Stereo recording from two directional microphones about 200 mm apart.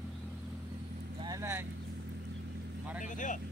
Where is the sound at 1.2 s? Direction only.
15° right (ahead or behind).